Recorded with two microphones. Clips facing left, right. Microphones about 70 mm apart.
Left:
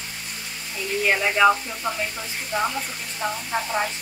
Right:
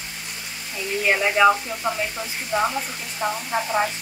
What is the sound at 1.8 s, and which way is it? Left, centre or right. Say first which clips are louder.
Frying: right 2 dB; right.